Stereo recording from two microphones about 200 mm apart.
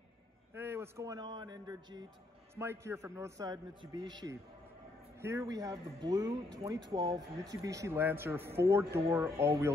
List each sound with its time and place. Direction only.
0.6 s a man's voice: 10° right (ahead or behind)
7.6 s a man's voice: 15° right (ahead or behind)